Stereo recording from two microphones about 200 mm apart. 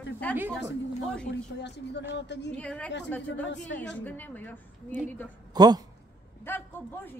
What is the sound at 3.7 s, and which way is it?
Speech, 65° left (ahead or behind).